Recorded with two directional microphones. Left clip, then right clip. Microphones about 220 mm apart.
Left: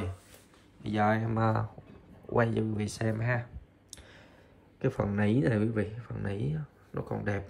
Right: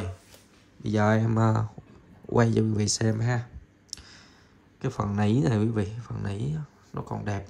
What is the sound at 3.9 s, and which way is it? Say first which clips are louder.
Clicking: right 8 dB; 5° right (ahead or behind).